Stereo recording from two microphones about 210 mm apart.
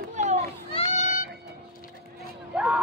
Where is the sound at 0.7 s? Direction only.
35° left (ahead or behind).